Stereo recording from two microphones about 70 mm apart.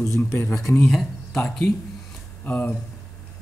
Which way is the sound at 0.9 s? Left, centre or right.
Centre.